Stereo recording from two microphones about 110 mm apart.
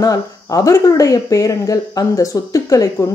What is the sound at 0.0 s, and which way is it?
Speech, 35° left (ahead or behind).